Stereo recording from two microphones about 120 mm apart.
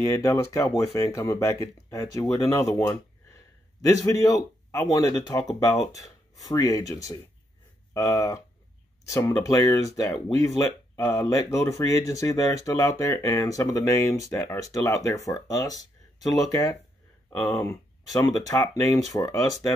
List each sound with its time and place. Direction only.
0.1 s speech: 25° left (ahead or behind)